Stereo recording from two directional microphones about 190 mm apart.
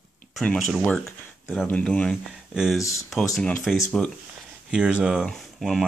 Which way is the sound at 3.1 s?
Centre (ahead or behind).